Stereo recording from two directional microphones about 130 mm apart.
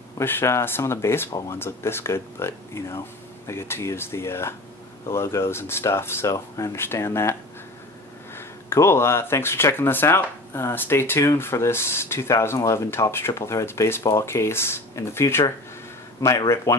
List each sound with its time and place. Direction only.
0.2 s speech: 15° left (ahead or behind)
8.4 s speech: 20° left (ahead or behind)